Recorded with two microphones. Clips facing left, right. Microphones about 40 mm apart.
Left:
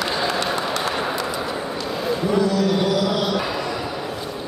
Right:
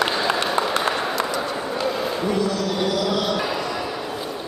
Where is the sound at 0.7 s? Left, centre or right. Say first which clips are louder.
Right 1 dB; right.